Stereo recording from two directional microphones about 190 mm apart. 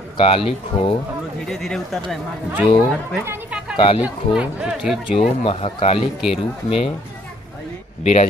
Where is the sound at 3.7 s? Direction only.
30° left (ahead or behind).